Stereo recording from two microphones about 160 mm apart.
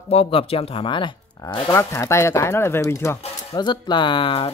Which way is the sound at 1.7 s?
15° left (ahead or behind).